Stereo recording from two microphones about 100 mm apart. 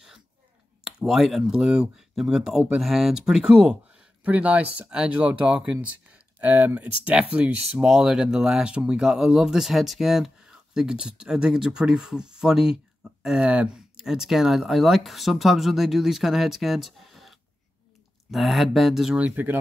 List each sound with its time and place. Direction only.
0.8 s speech: 5° right (ahead or behind)
19.1 s speech: 15° right (ahead or behind)